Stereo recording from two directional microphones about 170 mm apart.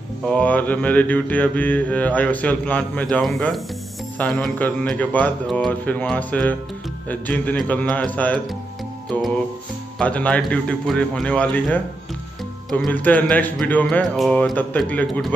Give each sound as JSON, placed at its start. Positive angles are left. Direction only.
{"t": 0.3, "sound": "mantra", "side_deg": 10}
{"t": 9.9, "sound": "mantra", "side_deg": 10}